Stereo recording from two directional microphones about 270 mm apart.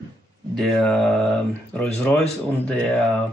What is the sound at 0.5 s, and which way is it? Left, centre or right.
Speech, centre.